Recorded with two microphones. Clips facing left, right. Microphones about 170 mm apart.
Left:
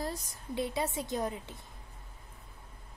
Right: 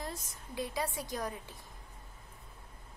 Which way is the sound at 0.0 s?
30° left (ahead or behind).